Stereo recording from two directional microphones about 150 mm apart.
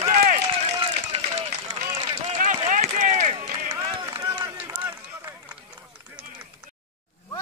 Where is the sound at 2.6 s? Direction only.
55° right (ahead or behind).